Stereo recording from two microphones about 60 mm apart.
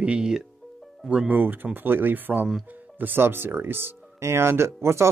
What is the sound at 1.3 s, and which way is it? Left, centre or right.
Speech, right.